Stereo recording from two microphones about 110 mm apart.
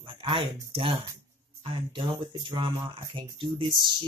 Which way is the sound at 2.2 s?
45° right (ahead or behind).